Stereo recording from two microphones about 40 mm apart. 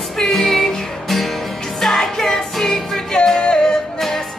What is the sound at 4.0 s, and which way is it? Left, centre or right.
Music, centre.